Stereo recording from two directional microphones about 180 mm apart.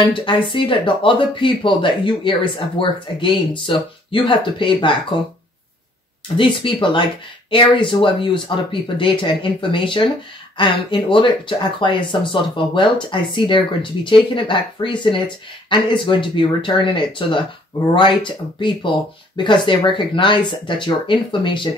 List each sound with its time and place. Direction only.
0.0 s speech: 30° left (ahead or behind)
6.3 s speech: 30° left (ahead or behind)